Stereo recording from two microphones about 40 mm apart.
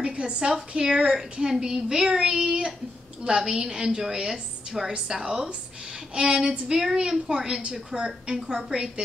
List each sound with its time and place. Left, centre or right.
0.0 s a woman's voice: right